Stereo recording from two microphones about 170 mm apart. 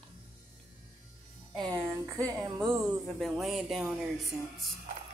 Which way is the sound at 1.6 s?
20° right (ahead or behind).